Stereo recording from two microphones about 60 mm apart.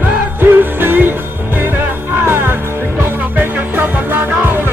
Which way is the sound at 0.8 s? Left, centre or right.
Right.